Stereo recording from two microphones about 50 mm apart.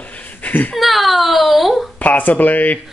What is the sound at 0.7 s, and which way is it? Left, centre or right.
Speech, centre.